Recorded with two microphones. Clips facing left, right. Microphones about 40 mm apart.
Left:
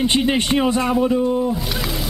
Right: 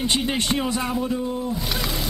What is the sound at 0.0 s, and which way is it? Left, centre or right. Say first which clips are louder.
Speech: left 5 dB; centre.